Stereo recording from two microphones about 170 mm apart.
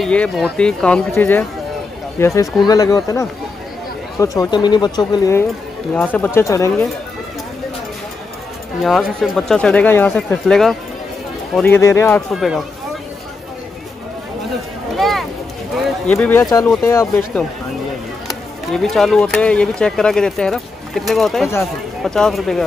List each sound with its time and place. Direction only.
0.0 s speech: 5° left (ahead or behind); by 5.4 s 20° left (ahead or behind)
5.9 s speech: 10° left (ahead or behind)
8.8 s speech: centre (ahead or behind)
12.4 s speech: centre (ahead or behind)
15.0 s a sound: centre (ahead or behind)
16.1 s speech: 10° left (ahead or behind)
18.7 s speech: centre (ahead or behind)